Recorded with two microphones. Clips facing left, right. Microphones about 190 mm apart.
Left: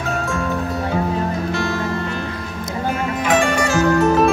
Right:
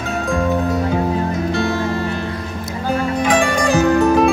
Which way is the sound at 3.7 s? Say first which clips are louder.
Right 3 dB; 15° right (ahead or behind).